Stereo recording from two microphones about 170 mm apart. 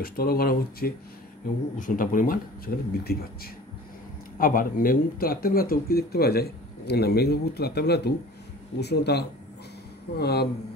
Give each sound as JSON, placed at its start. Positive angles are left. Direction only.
{"t": 0.0, "sound": "a man's voice", "side_deg": 60}
{"t": 4.4, "sound": "speech", "side_deg": 55}